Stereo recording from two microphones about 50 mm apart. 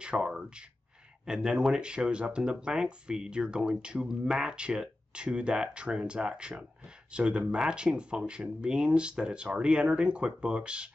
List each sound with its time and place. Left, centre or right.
0.0 s speech: centre